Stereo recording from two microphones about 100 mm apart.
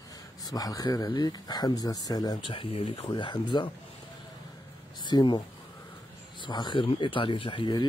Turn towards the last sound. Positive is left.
turn(degrees=50)  # may be behind; listen again after turning